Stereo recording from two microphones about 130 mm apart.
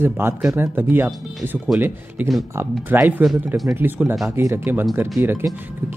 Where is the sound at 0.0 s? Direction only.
15° right (ahead or behind).